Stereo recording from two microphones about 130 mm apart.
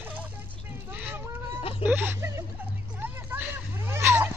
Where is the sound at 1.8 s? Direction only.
15° right (ahead or behind).